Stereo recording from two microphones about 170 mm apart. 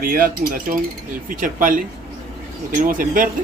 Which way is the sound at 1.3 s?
55° right (ahead or behind).